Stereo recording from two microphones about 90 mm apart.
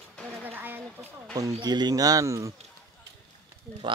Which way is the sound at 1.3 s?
45° right (ahead or behind).